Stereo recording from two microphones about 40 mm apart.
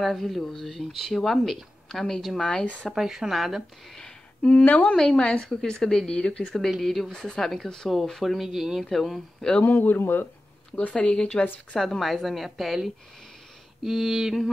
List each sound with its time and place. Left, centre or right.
0.0 s speech: centre
2.9 s speech: centre
4.4 s speech: left
4.6 s speech: left
4.9 s speech: centre
5.2 s speech: left
5.5 s speech: centre
6.4 s speech: centre
8.4 s speech: centre
8.8 s speech: centre
9.7 s speech: left
10.8 s speech: left
11.1 s speech: centre
11.8 s speech: centre